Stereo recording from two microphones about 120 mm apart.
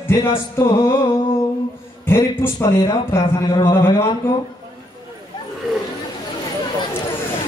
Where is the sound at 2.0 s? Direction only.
20° left (ahead or behind).